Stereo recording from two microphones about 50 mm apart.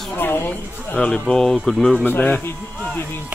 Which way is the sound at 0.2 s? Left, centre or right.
Left.